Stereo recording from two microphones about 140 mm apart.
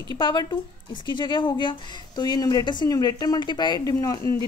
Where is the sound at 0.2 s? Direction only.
30° left (ahead or behind).